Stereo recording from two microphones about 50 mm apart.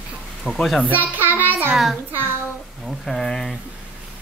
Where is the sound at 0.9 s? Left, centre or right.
Right.